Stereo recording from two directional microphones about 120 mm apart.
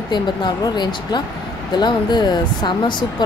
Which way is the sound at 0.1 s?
40° left (ahead or behind).